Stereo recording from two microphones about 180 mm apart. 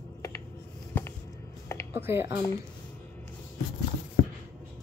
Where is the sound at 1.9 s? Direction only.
15° right (ahead or behind).